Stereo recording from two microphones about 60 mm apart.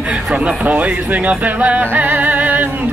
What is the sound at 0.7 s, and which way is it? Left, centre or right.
Speech, right.